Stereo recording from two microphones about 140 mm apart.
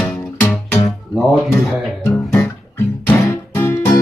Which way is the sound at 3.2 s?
20° left (ahead or behind).